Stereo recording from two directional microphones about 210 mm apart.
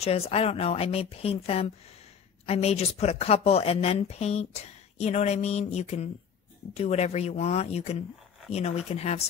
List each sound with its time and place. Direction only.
0.0 s speech: 30° left (ahead or behind)